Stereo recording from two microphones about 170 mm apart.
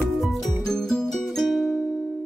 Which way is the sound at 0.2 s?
Centre (ahead or behind).